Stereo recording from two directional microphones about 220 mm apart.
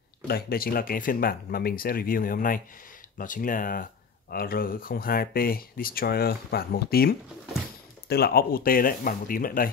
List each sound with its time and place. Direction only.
0.3 s speech: 45° left (ahead or behind)